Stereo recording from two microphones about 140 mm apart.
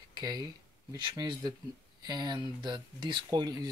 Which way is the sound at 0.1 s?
30° right (ahead or behind).